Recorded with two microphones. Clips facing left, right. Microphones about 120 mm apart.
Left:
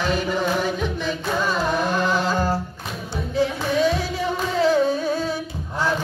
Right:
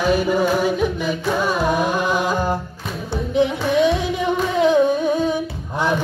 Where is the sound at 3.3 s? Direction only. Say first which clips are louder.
Right 4 dB; 20° right (ahead or behind).